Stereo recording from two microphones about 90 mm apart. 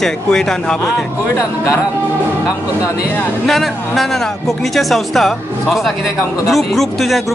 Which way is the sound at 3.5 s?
Centre (ahead or behind).